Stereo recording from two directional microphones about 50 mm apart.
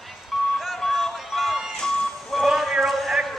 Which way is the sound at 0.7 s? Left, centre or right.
Centre.